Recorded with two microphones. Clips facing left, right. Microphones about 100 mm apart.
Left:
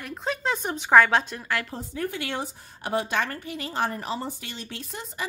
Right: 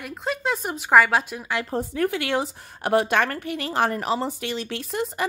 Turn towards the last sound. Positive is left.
turn(degrees=-70)  # may be behind; listen again after turning